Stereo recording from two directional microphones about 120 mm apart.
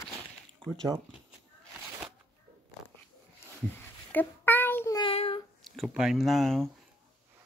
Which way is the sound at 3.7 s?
15° left (ahead or behind).